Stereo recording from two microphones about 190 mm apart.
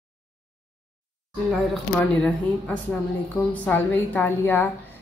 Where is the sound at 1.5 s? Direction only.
Centre (ahead or behind).